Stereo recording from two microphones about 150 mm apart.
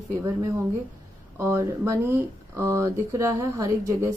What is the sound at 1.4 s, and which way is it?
Speech, 15° right (ahead or behind).